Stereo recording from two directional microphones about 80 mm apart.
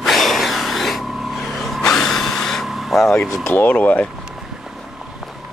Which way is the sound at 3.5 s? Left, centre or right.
Left.